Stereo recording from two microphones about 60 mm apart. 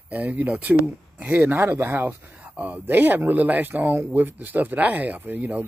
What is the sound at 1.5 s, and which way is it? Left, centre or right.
Speech, right.